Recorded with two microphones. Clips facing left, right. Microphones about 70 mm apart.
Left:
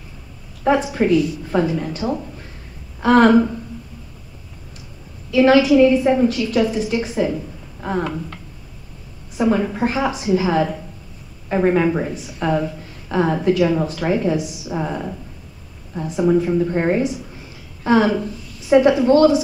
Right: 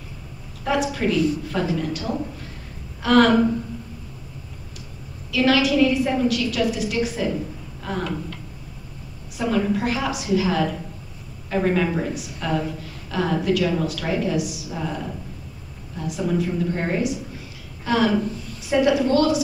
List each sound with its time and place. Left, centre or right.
0.7 s a woman's voice: left
5.3 s a woman's voice: left
7.8 s a sound: left
9.4 s a woman's voice: left